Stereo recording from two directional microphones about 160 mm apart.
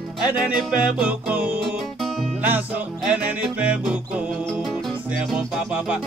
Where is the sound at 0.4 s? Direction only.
5° right (ahead or behind).